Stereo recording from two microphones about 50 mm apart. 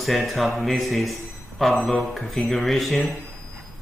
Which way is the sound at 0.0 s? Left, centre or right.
Centre.